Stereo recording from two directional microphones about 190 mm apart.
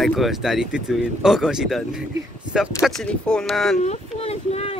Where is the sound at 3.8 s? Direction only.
35° left (ahead or behind).